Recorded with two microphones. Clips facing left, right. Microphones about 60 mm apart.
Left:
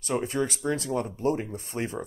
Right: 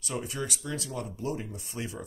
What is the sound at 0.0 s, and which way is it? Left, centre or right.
Speech, left.